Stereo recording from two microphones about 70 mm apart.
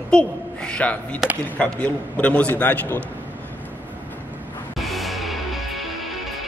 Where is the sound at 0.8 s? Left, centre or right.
Centre.